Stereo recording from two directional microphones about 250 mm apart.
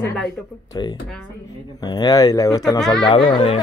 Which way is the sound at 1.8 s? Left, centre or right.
Centre.